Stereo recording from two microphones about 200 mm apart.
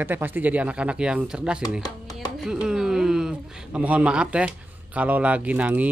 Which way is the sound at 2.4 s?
5° right (ahead or behind).